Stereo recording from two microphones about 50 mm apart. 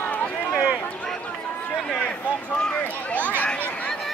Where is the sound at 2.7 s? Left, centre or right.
Left.